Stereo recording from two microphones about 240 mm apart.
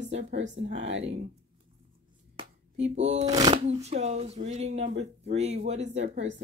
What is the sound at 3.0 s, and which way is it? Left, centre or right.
Speech, right.